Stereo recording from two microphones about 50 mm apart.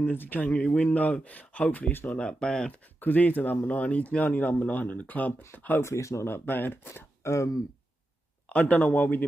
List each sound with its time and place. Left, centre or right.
0.0 s speech: left
2.1 s speech: centre
3.0 s speech: left
5.8 s speech: left
6.2 s speech: left
7.2 s speech: left
8.5 s speech: left